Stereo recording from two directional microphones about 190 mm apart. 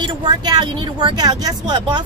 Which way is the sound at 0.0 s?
20° right (ahead or behind).